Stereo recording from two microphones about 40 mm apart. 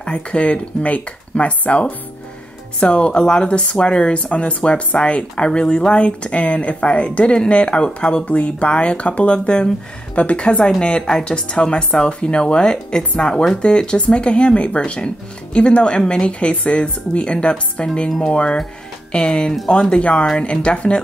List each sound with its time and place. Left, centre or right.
0.0 s speech: left
2.8 s speech: left
8.3 s speech: left
10.4 s speech: left